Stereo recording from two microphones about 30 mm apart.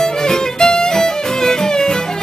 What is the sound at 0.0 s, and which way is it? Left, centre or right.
Music, left.